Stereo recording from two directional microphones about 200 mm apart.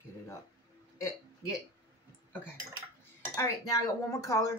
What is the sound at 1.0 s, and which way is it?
Speech, 15° left (ahead or behind).